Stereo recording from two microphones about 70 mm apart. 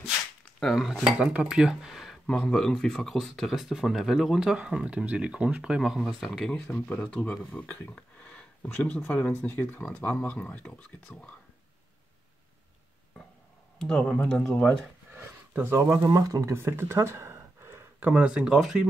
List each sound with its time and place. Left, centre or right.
0.6 s speech: centre
1.2 s speech: centre
2.2 s speech: centre
4.9 s speech: centre
6.7 s speech: centre
7.5 s a sound: left
9.1 s speech: left
13.7 s speech: centre
15.0 s a sound: right
15.9 s speech: right
16.5 s a sound: right
18.0 s speech: centre